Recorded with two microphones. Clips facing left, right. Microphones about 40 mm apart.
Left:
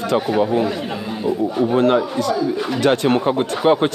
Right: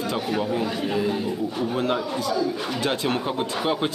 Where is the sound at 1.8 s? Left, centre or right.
Left.